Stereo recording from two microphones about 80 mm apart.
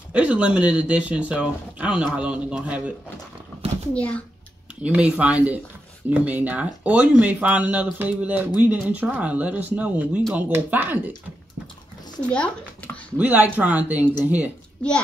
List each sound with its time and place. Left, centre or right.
0.1 s speech: centre
3.9 s a child's voice: centre
4.8 s speech: centre
12.2 s speech: centre
13.2 s speech: right